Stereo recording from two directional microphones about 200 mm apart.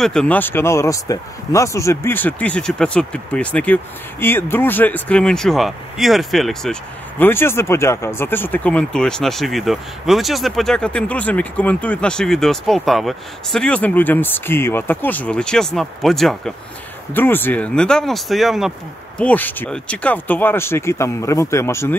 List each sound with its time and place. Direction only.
0.0 s speech: 5° left (ahead or behind)